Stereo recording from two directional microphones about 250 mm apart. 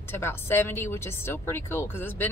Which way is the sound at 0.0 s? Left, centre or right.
Centre.